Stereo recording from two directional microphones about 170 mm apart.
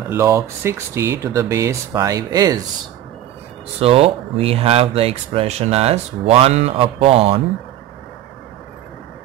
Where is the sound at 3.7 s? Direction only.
35° right (ahead or behind).